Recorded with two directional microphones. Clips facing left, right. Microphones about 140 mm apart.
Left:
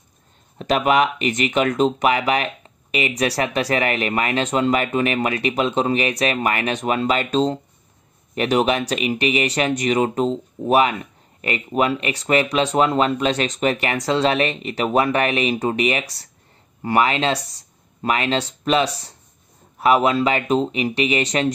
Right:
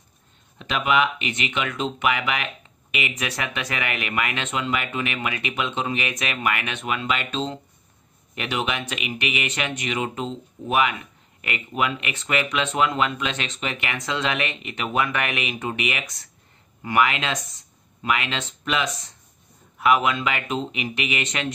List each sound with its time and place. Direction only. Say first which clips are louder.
0.6 s speech: left 5 dB; 40° left (ahead or behind)